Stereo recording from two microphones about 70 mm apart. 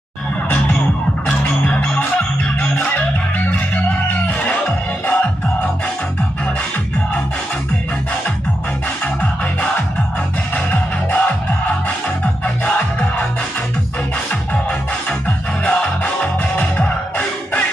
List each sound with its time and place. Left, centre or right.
1.2 s music: centre
9.0 s music: left
12.6 s music: left
15.0 s music: left